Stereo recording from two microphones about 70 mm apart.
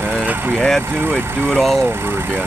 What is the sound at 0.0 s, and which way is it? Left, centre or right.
Vehicle, right.